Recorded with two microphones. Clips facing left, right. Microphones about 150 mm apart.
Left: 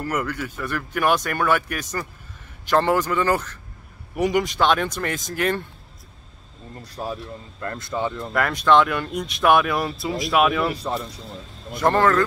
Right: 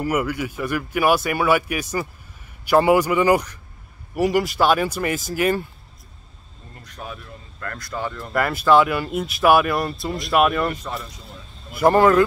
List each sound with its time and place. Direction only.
0.0 s speech: 10° right (ahead or behind)
6.8 s speech: 35° left (ahead or behind)
7.6 s speech: 25° left (ahead or behind)
8.3 s speech: 5° right (ahead or behind)
11.7 s speech: 10° right (ahead or behind)